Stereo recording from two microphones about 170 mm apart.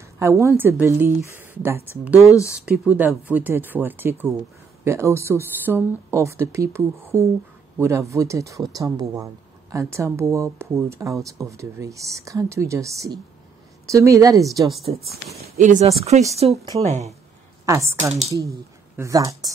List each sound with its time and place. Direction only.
0.2 s speech: 15° right (ahead or behind)
2.1 s speech: 20° left (ahead or behind)
2.5 s speech: 5° right (ahead or behind)
15.0 s speech: centre (ahead or behind)
15.4 s speech: 45° right (ahead or behind)
17.6 s a woman's voice: 20° right (ahead or behind)
18.9 s speech: 20° right (ahead or behind)